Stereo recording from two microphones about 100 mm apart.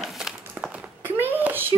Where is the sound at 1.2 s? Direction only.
20° right (ahead or behind).